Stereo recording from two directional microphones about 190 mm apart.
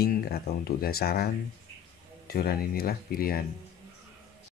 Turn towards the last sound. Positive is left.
turn(degrees=50)  # may be behind; listen again after turning